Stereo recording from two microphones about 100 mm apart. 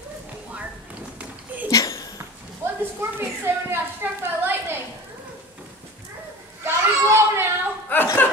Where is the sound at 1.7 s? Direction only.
35° left (ahead or behind).